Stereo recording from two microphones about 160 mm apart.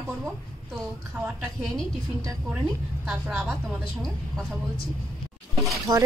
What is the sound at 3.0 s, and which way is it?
Speech, 5° right (ahead or behind).